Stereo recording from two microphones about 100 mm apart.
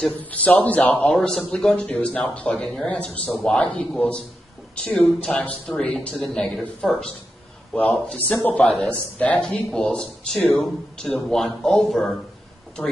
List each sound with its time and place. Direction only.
0.1 s a woman's voice: 15° left (ahead or behind)
1.0 s a woman's voice: 5° left (ahead or behind)
6.1 s speech: centre (ahead or behind)
7.7 s a woman's voice: 15° left (ahead or behind)